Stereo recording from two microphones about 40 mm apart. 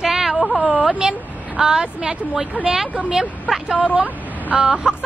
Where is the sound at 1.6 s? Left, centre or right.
Centre.